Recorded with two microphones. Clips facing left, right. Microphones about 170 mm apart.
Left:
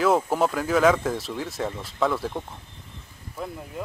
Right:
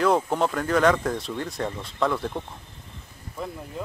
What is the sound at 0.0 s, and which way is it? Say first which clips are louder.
Speech: left 1 dB; 5° left (ahead or behind).